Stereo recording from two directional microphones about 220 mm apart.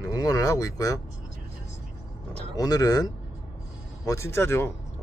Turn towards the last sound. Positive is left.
turn(degrees=10)  # may be behind; listen again after turning